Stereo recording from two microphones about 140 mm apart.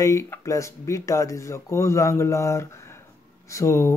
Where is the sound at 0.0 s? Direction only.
25° left (ahead or behind).